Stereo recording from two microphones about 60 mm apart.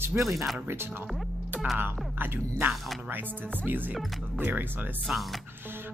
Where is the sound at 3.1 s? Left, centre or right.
Right.